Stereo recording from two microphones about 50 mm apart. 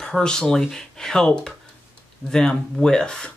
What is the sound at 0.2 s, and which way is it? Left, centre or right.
Speech, centre.